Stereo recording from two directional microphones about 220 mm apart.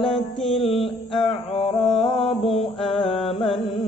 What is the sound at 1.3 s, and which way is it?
Speech, 25° left (ahead or behind).